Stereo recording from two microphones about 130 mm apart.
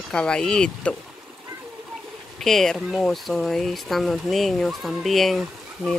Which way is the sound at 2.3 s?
5° left (ahead or behind).